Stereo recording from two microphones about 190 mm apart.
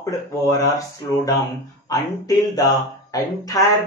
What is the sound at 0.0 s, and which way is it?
Speech, 15° left (ahead or behind).